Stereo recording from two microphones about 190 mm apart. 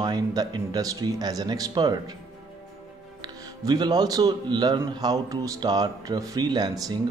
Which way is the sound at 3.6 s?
20° right (ahead or behind).